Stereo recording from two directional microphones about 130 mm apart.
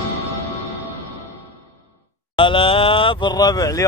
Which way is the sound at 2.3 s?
40° left (ahead or behind).